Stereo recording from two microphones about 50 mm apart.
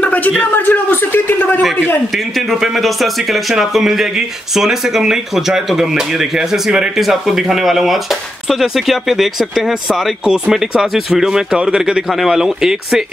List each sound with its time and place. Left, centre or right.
0.0 s a sound: left
0.5 s a man's voice: left
2.1 s speech: centre
12.1 s speech: centre